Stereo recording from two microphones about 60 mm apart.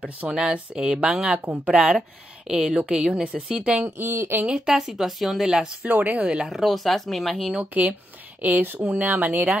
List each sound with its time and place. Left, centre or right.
0.3 s speech: centre
3.8 s speech: right
4.5 s speech: centre
5.9 s speech: right
6.2 s speech: centre
6.6 s speech: centre
8.4 s speech: right